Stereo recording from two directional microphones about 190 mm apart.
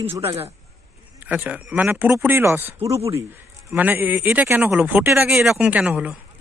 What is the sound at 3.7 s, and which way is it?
Speech, 10° right (ahead or behind).